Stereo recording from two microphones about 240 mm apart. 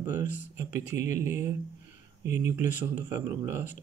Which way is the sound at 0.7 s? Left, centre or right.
Left.